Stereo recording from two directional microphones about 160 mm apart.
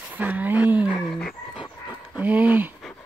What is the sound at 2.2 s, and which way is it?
Speech, 10° right (ahead or behind).